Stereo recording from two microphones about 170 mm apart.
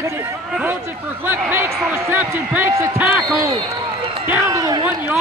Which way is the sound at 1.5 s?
15° right (ahead or behind).